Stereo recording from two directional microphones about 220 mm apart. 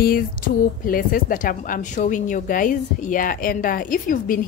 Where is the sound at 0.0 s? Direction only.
40° left (ahead or behind).